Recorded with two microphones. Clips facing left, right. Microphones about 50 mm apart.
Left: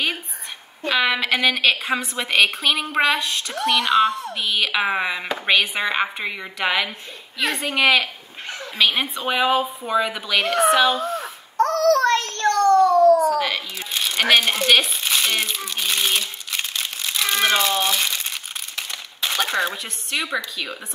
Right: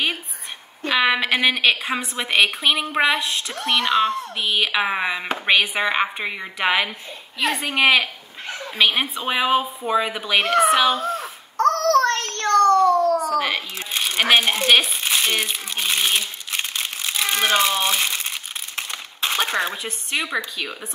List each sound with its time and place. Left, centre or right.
0.9 s chopping: centre
3.2 s speech: right
4.4 s chopping: centre
5.4 s chopping: centre
10.3 s a woman's voice: right
11.0 s a sound: right
13.4 s crumpling: right
15.4 s speech: right
15.8 s crumpling: centre
19.7 s chopping: centre